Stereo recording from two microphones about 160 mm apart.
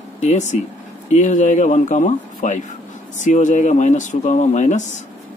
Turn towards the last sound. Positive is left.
turn(degrees=50)  # may be behind; listen again after turning